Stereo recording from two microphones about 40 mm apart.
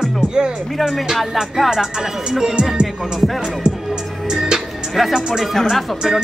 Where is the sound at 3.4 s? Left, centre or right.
Centre.